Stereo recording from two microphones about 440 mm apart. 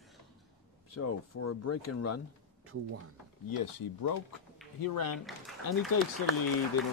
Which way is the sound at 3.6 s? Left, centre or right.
Left.